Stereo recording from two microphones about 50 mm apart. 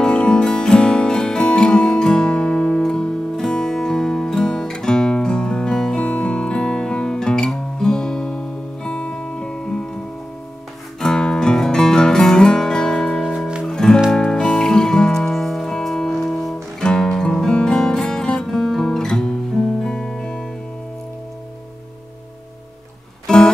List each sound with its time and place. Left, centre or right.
0.0 s music: centre
11.0 s music: centre
23.2 s music: centre